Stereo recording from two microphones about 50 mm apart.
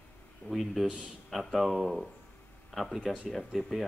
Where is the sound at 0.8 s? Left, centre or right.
Right.